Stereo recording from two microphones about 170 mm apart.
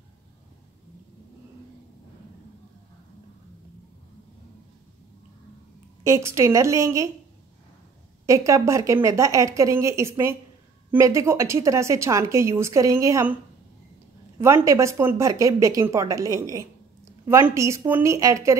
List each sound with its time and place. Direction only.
6.0 s a woman's voice: 15° right (ahead or behind)
8.3 s a woman's voice: 15° right (ahead or behind)
14.4 s a woman's voice: 15° right (ahead or behind)